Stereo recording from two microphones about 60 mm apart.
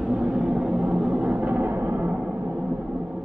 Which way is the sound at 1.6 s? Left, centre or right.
Right.